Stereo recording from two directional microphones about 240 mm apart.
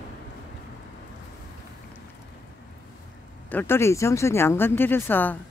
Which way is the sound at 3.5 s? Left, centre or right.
Centre.